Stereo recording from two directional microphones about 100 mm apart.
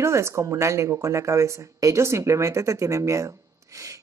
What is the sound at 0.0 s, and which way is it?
Speech, 30° right (ahead or behind).